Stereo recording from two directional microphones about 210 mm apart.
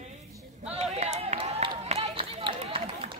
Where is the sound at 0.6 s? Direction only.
30° right (ahead or behind).